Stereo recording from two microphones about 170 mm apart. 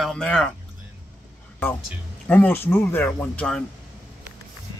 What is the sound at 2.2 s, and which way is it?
Speech, 10° left (ahead or behind).